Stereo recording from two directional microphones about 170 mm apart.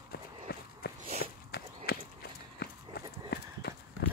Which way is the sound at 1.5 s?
70° left (ahead or behind).